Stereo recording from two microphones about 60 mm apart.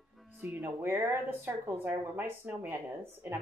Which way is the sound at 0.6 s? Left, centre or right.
Right.